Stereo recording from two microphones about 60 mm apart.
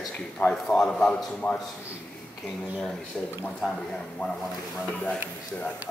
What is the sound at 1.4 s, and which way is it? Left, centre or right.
Speech, left.